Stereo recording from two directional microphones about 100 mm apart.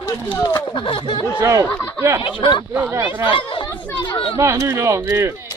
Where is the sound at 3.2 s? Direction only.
60° left (ahead or behind).